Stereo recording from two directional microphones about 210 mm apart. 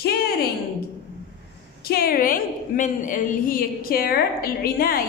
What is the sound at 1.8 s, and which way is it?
A woman's voice, 45° left (ahead or behind).